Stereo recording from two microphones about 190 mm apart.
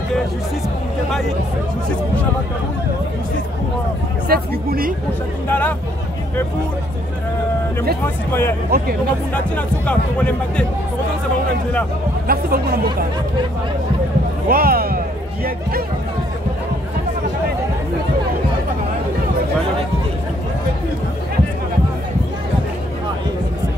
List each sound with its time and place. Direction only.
4.3 s speech: 50° right (ahead or behind)
5.5 s speech: 10° left (ahead or behind)
8.0 s speech: 10° left (ahead or behind)
8.6 s speech: 55° right (ahead or behind)
9.3 s speech: 5° left (ahead or behind)
12.3 s speech: 50° right (ahead or behind)
14.5 s speech: 50° right (ahead or behind)